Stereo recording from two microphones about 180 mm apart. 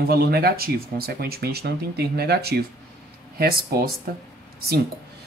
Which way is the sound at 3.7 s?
60° right (ahead or behind).